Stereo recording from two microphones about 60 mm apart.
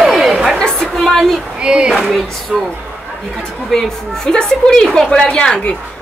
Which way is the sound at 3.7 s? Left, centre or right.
Centre.